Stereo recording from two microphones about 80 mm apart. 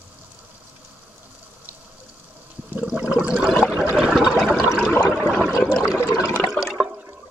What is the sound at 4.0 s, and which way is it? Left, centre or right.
Water, centre.